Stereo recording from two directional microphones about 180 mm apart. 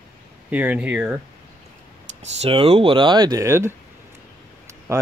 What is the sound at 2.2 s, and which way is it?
Speech, 35° right (ahead or behind).